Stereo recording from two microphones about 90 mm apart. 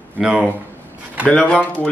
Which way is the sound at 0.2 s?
10° right (ahead or behind).